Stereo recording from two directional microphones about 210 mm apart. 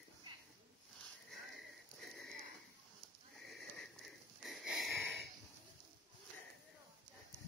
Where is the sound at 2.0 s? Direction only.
Centre (ahead or behind).